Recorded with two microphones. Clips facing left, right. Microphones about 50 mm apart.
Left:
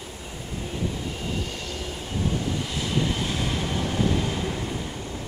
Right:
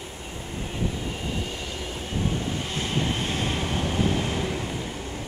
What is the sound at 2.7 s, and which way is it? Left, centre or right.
Vehicle, right.